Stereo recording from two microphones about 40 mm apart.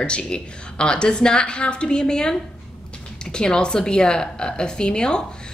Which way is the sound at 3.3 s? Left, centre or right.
Left.